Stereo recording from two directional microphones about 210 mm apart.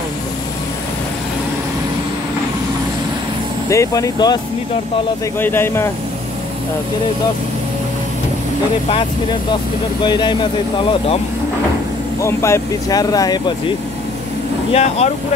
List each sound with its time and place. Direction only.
3.6 s speech: 15° left (ahead or behind)
5.4 s speech: 10° left (ahead or behind)
10.0 s speech: 20° left (ahead or behind)
12.2 s speech: 15° left (ahead or behind)
14.7 s speech: 30° left (ahead or behind)